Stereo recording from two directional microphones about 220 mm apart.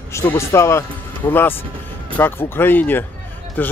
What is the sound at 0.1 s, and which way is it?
Speech, 10° left (ahead or behind).